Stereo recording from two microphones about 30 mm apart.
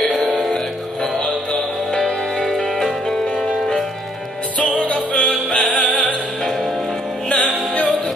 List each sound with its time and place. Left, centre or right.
1.2 s music: left
2.0 s music: centre
4.6 s music: left
7.2 s music: left